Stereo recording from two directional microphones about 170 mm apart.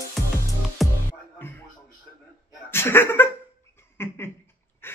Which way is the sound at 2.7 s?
15° left (ahead or behind).